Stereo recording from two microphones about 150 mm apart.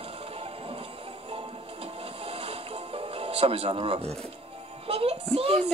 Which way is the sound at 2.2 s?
40° right (ahead or behind).